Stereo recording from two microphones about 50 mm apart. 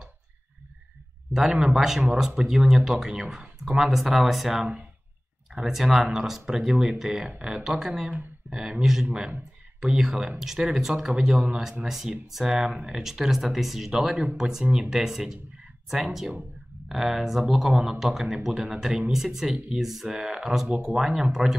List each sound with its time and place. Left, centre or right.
1.3 s speech: centre
10.8 s speech: centre
20.1 s speech: centre